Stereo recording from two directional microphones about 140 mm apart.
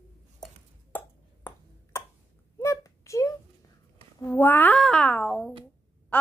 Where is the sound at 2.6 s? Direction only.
20° left (ahead or behind).